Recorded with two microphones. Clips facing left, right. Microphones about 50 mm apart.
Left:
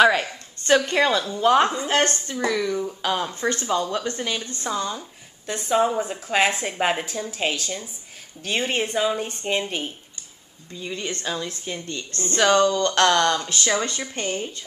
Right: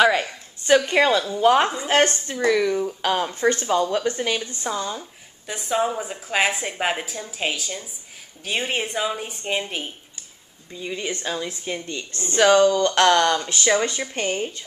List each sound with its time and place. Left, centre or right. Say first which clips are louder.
0.0 s a woman's voice: left 1 dB; centre; by 4.6 s right
4.6 s a woman's voice: left 2 dB; centre; by 14.5 s right